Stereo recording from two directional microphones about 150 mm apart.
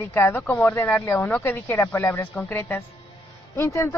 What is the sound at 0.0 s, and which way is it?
Speech, 15° left (ahead or behind).